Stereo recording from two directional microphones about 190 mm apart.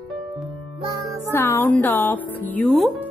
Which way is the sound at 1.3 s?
10° left (ahead or behind).